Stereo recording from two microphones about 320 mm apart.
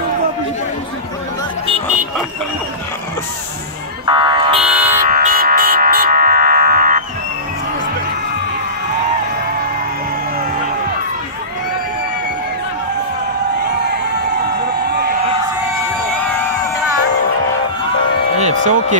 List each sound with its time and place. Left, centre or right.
4.0 s buzzer: centre
13.7 s crowd: right
18.6 s a sound: right